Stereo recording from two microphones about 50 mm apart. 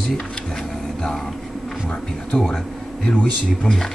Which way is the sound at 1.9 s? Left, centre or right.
Centre.